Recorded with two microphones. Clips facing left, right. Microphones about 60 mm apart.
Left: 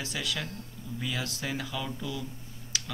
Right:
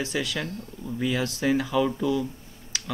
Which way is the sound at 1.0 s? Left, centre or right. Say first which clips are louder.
Right 8 dB; centre.